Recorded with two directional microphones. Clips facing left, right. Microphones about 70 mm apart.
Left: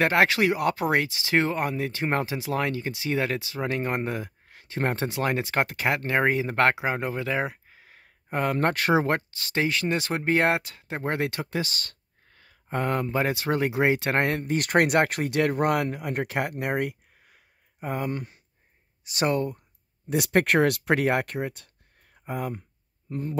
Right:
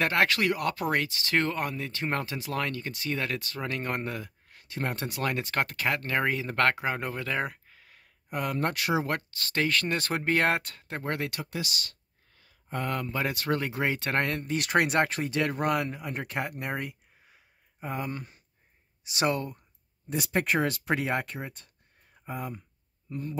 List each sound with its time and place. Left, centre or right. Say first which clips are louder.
0.0 s speech: left 4 dB; left
7.7 s a sound: left 4 dB; left
8.5 s speech: left 5 dB; left
9.3 s speech: left 2 dB; centre
10.9 s speech: left 4 dB; centre
11.1 s speech: left 6 dB; left
12.6 s speech: left 5 dB; left
14.5 s speech: left 3 dB; left
20.1 s speech: left 6 dB; left